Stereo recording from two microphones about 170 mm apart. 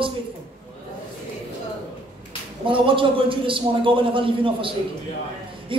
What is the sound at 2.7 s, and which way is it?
A man's voice, 30° right (ahead or behind).